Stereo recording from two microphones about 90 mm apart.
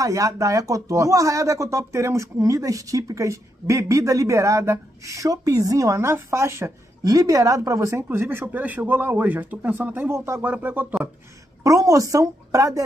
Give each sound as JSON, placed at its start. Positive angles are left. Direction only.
{"t": 0.0, "sound": "speech", "side_deg": -40}
{"t": 5.9, "sound": "speech", "side_deg": -30}
{"t": 10.4, "sound": "speech", "side_deg": -20}
{"t": 11.6, "sound": "speech", "side_deg": -40}